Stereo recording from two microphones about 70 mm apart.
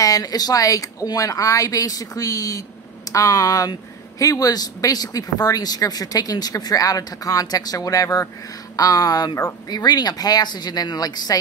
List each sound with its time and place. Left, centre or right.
0.0 s speech: left
9.7 s speech: left